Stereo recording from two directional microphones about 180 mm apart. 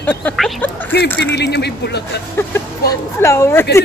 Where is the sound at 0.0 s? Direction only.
10° left (ahead or behind).